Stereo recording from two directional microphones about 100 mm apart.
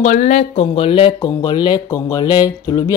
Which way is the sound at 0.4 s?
80° left.